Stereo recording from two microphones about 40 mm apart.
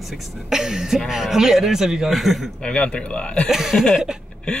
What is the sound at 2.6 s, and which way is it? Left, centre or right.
Speech, left.